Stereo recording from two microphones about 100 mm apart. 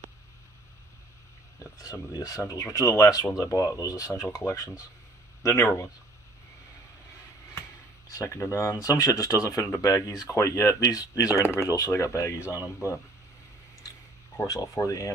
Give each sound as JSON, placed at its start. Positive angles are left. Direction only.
{"t": 1.6, "sound": "speech", "side_deg": 35}
{"t": 8.1, "sound": "speech", "side_deg": 30}
{"t": 14.3, "sound": "speech", "side_deg": 35}